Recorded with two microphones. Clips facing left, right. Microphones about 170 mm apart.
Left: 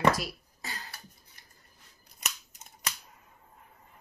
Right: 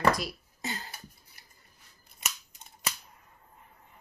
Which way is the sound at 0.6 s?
25° right (ahead or behind).